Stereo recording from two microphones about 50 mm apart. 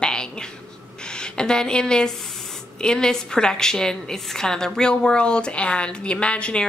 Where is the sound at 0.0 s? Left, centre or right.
Centre.